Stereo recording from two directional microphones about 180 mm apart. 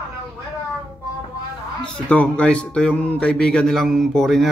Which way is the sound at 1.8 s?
5° left (ahead or behind).